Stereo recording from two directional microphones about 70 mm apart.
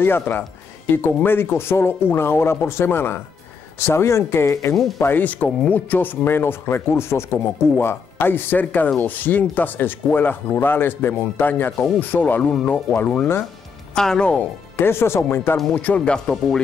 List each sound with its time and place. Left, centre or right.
0.0 s speech: left
4.7 s speech: centre
5.0 s speech: left
13.9 s speech: centre
14.8 s speech: left
16.1 s speech: centre